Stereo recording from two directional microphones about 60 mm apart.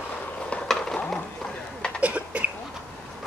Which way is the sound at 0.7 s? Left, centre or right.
Centre.